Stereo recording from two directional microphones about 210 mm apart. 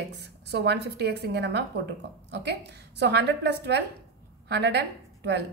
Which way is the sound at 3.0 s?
55° right (ahead or behind).